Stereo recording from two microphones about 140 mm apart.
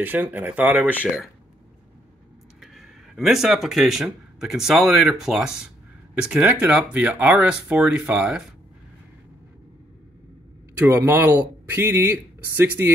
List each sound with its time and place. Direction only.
0.0 s speech: 10° right (ahead or behind)
2.6 s speech: centre (ahead or behind)
10.7 s speech: 15° right (ahead or behind)